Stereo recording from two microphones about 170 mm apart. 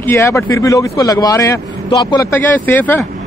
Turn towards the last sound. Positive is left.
turn(degrees=10)  # may be behind; listen again after turning